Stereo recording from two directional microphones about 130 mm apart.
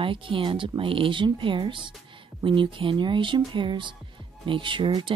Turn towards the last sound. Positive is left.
turn(degrees=-40)  # may be behind; listen again after turning